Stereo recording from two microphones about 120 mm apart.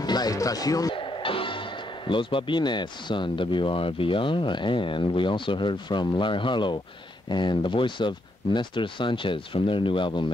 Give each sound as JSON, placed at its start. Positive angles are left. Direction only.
{"t": 0.0, "sound": "speech", "side_deg": 35}
{"t": 0.9, "sound": "speech", "side_deg": 45}